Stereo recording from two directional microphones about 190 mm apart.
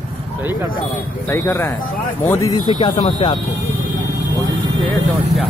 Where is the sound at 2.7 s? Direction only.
25° left (ahead or behind).